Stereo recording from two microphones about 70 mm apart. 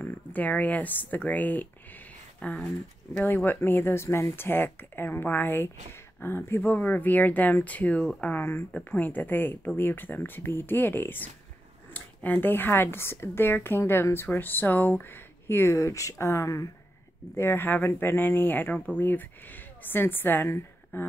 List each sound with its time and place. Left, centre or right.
0.0 s speech: left
3.2 s speech: left
6.7 s speech: left
17.4 s speech: left